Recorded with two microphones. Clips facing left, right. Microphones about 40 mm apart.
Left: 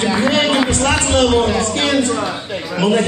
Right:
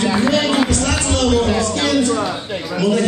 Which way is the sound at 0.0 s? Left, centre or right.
Left.